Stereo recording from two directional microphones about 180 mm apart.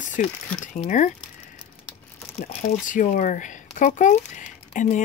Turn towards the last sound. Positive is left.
turn(degrees=45)  # may be behind; listen again after turning